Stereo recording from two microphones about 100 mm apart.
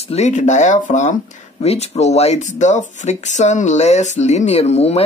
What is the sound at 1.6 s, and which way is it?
Speech, 90° left.